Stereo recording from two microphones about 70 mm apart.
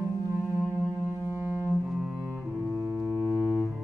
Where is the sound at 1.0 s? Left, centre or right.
Right.